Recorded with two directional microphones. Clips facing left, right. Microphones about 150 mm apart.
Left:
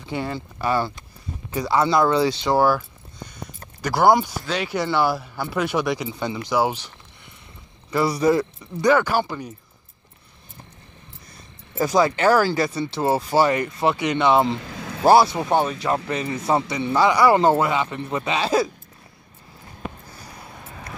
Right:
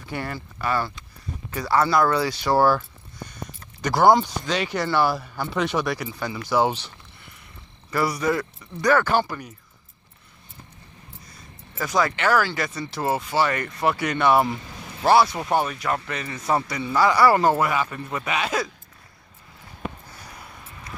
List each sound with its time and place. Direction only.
0.0 s speech: 20° left (ahead or behind)
1.5 s speech: 15° left (ahead or behind)
3.8 s speech: 10° left (ahead or behind)
7.9 s speech: 30° left (ahead or behind)
11.7 s speech: 30° left (ahead or behind)
13.5 s speech: 25° left (ahead or behind)
14.8 s vehicle: 90° left
15.5 s speech: 25° left (ahead or behind)